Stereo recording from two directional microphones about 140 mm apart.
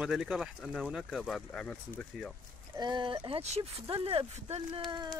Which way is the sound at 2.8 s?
30° right (ahead or behind).